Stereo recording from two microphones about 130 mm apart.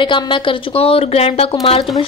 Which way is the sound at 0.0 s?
40° left (ahead or behind).